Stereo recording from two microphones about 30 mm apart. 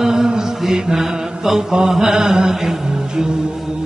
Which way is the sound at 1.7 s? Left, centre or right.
Right.